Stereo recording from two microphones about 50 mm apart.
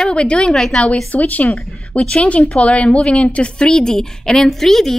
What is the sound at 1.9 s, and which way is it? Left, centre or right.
A woman's voice, left.